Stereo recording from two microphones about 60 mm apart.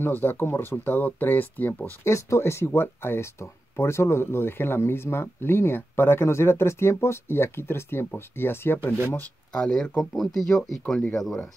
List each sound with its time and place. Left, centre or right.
0.0 s speech: left
2.0 s speech: left
9.5 s speech: centre
10.1 s speech: centre